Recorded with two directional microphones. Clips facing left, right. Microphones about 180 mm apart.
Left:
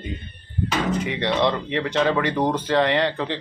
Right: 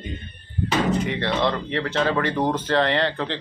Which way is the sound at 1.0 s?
15° left (ahead or behind).